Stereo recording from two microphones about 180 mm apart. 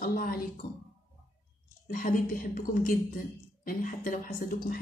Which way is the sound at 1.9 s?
50° left (ahead or behind).